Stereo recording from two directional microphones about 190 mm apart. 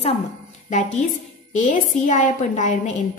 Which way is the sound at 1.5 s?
40° left (ahead or behind).